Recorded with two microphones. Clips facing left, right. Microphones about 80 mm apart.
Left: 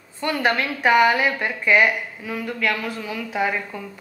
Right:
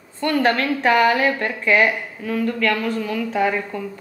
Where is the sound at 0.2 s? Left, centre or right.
Centre.